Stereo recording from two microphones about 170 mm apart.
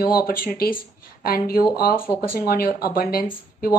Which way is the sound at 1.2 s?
60° left (ahead or behind).